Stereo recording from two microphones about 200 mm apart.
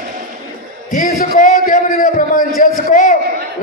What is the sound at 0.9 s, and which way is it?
A man's voice, 45° left (ahead or behind).